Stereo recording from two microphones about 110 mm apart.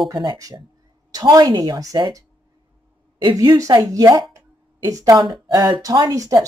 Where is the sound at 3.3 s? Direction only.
35° right (ahead or behind).